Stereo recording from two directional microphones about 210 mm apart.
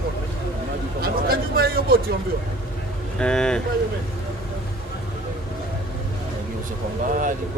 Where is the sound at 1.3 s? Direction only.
45° right (ahead or behind).